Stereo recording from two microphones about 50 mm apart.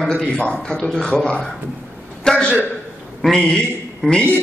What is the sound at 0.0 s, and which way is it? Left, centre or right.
A man's voice, centre.